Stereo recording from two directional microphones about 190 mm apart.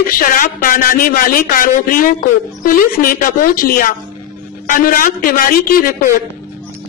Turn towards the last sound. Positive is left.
turn(degrees=50)  # may be behind; listen again after turning